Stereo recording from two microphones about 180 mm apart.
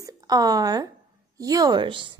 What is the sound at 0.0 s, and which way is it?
A woman's voice, 20° right (ahead or behind).